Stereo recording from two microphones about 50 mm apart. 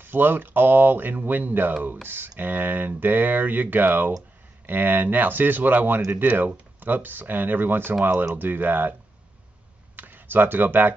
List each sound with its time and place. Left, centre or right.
0.0 s speech: right
9.9 s speech: right